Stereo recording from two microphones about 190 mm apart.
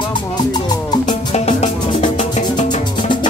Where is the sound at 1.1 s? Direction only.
35° left (ahead or behind).